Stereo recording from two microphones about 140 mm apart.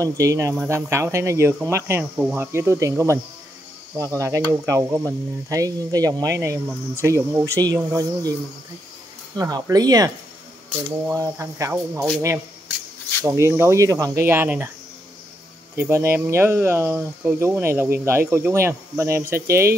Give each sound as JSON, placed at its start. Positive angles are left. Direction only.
{"t": 0.0, "sound": "speech", "side_deg": -25}
{"t": 9.4, "sound": "speech", "side_deg": -25}
{"t": 13.2, "sound": "speech", "side_deg": -20}
{"t": 15.7, "sound": "speech", "side_deg": -20}